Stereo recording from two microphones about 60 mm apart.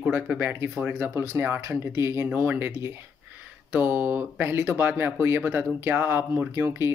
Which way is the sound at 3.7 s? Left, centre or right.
Right.